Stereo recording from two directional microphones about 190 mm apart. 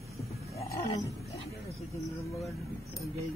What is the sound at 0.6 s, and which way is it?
Roaring cats, 15° left (ahead or behind).